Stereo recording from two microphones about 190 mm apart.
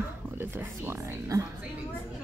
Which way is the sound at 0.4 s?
10° right (ahead or behind).